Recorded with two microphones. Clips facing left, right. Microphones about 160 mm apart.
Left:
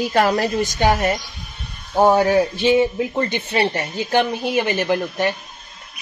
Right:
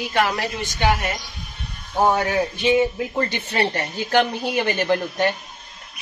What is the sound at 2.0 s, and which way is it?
Speech, 30° left (ahead or behind).